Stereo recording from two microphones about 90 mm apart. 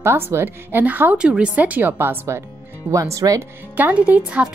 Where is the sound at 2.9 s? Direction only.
35° right (ahead or behind).